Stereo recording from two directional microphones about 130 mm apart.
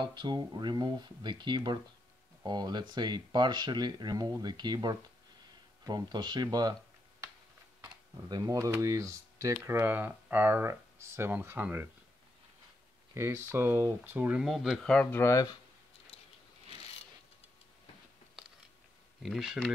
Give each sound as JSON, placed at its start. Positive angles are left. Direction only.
{"t": 0.0, "sound": "speech", "side_deg": -35}
{"t": 8.3, "sound": "speech", "side_deg": -30}
{"t": 13.1, "sound": "speech", "side_deg": -20}
{"t": 14.4, "sound": "speech", "side_deg": 0}
{"t": 14.9, "sound": "speech", "side_deg": 10}
{"t": 19.2, "sound": "speech", "side_deg": 0}